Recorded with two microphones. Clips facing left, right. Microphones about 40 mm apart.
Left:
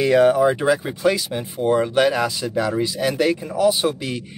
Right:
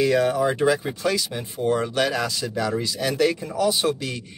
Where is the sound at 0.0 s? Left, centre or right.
Left.